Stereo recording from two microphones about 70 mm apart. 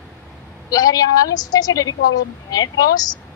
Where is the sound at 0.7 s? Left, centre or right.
Left.